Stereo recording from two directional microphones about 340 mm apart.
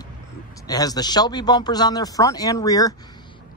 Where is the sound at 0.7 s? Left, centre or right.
Centre.